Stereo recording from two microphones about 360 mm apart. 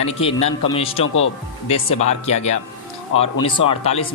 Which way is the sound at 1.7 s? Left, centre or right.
Centre.